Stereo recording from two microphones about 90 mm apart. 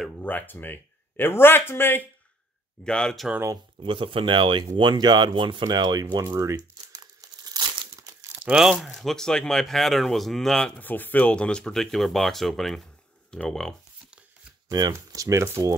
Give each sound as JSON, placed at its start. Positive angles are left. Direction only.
{"t": 0.2, "sound": "speech", "side_deg": 20}
{"t": 2.8, "sound": "speech", "side_deg": 10}
{"t": 3.8, "sound": "speech", "side_deg": -75}
{"t": 6.2, "sound": "crumpling", "side_deg": -35}
{"t": 8.4, "sound": "speech", "side_deg": -10}
{"t": 10.8, "sound": "speech", "side_deg": 20}
{"t": 14.9, "sound": "speech", "side_deg": -35}